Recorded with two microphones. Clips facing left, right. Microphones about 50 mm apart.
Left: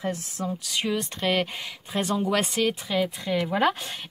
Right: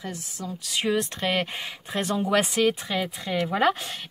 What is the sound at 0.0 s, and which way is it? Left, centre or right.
Speech, left.